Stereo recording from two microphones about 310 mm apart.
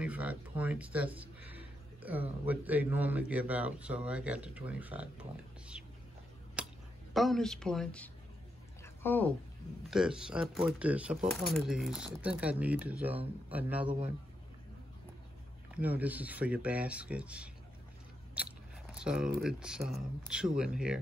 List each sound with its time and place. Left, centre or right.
0.0 s speech: centre
5.7 s whispering: centre
6.6 s a sound: centre
7.2 s speech: centre
8.8 s a sound: centre
9.8 s speech: centre
13.8 s a man's voice: centre
15.7 s speech: centre